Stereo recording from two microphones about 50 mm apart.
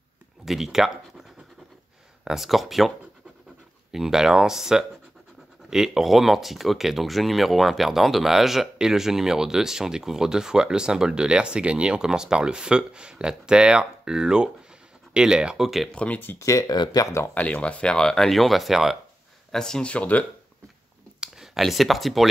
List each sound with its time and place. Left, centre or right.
0.5 s speech: centre
2.2 s speech: centre
3.9 s speech: centre
15.6 s speech: centre
15.9 s speech: left
16.3 s speech: left
17.3 s speech: left; by 18.9 s centre
19.5 s speech: centre
19.9 s speech: left
21.5 s speech: centre